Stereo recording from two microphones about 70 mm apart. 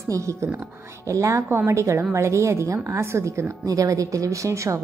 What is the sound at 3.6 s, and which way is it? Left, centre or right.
A woman's voice, right.